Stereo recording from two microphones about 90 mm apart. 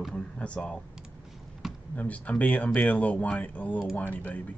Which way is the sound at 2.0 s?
15° left (ahead or behind).